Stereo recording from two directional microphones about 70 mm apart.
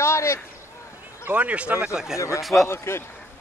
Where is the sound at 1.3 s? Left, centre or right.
Centre.